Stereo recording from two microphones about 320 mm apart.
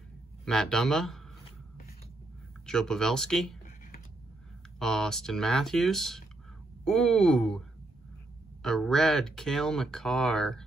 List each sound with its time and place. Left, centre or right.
0.5 s speech: centre
2.6 s speech: centre
4.7 s speech: centre
8.6 s speech: centre